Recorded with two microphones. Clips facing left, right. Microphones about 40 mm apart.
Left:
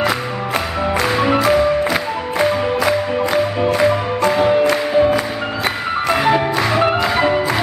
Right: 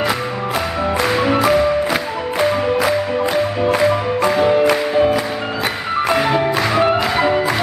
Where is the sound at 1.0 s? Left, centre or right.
Centre.